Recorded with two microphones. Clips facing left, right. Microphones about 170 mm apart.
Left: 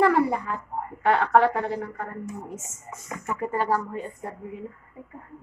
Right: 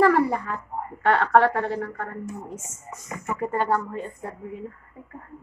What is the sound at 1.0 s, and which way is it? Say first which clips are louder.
Speech: right 1 dB; 5° left (ahead or behind).